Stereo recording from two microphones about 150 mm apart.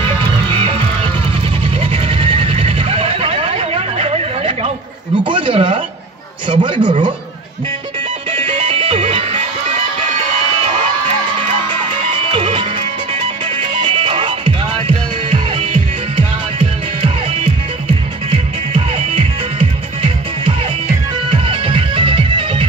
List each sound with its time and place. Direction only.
0.6 s music: 35° right (ahead or behind)
1.8 s a sound: 40° right (ahead or behind)
6.5 s a man's voice: 30° right (ahead or behind)
8.3 s music: 35° right (ahead or behind)
12.3 s music: 35° right (ahead or behind)
18.9 s music: 40° right (ahead or behind)
21.3 s music: 35° right (ahead or behind)